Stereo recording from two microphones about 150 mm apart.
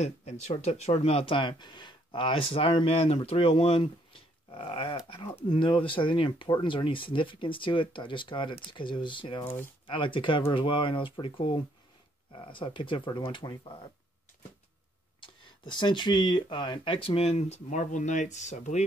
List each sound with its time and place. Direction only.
0.0 s speech: 50° left (ahead or behind); by 9.4 s 35° left (ahead or behind)
9.4 s speech: 15° left (ahead or behind)
9.8 s speech: 35° left (ahead or behind)
15.1 s speech: 35° left (ahead or behind); by 18.9 s 50° left (ahead or behind)